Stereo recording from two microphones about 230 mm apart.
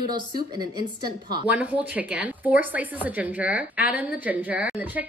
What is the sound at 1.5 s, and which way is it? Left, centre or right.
A woman's voice, centre.